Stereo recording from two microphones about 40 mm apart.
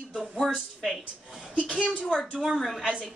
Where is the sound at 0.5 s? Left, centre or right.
Centre.